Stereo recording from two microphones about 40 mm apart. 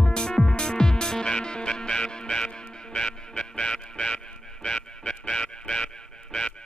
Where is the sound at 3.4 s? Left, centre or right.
Left.